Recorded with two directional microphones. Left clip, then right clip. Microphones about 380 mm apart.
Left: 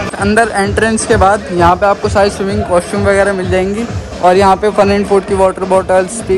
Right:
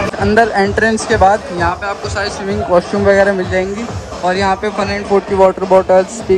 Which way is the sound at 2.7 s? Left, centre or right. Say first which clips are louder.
Right 1 dB; right.